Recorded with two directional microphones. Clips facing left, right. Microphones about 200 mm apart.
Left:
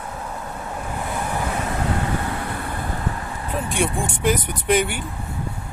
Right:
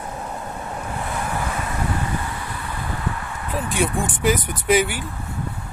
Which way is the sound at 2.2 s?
55° left (ahead or behind).